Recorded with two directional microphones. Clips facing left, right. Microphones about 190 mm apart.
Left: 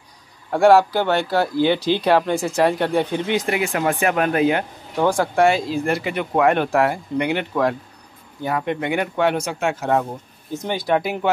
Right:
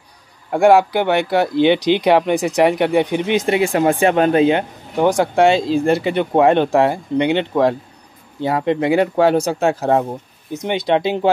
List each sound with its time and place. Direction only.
0.5 s speech: 15° right (ahead or behind); by 10.0 s 35° right (ahead or behind)
10.5 s speech: 20° right (ahead or behind)